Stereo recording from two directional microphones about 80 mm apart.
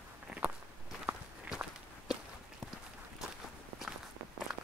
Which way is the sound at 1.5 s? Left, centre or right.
Centre.